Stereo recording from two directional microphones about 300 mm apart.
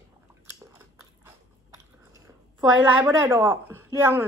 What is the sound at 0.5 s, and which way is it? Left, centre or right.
Biting, centre.